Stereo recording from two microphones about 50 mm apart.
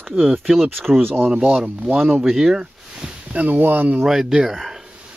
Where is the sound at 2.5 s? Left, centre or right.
Centre.